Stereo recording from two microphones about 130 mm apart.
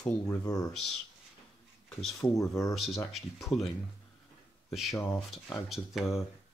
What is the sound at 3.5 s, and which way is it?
Speech, 45° left (ahead or behind).